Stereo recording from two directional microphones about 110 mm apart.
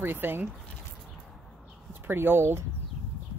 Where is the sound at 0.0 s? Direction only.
20° right (ahead or behind).